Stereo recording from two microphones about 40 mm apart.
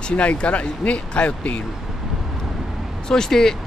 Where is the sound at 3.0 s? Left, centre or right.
Centre.